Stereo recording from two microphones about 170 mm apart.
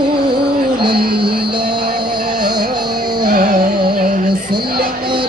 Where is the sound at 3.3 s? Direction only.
65° right (ahead or behind).